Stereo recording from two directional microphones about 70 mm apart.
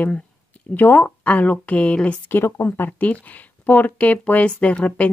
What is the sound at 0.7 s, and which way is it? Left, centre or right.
Speech, left.